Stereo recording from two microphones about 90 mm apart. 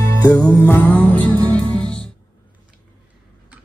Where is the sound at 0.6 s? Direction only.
20° left (ahead or behind).